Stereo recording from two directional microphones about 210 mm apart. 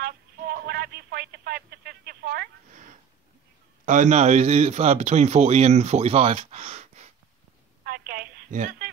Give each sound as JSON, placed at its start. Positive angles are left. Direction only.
{"t": 0.0, "sound": "a sound", "side_deg": -50}
{"t": 3.8, "sound": "a man's voice", "side_deg": -35}
{"t": 7.8, "sound": "telephone", "side_deg": -45}